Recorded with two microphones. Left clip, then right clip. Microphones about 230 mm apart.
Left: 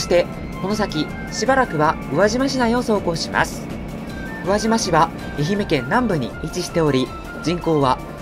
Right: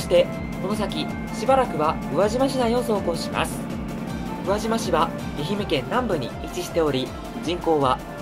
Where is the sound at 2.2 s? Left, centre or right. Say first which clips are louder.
Left 4 dB; left.